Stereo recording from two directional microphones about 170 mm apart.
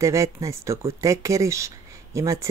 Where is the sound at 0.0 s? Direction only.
20° right (ahead or behind).